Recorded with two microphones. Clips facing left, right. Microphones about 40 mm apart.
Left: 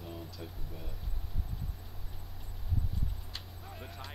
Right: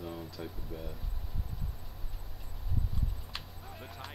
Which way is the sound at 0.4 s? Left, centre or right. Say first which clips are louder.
Right 4 dB; centre.